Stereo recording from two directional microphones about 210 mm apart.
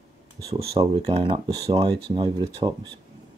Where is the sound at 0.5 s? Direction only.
25° right (ahead or behind).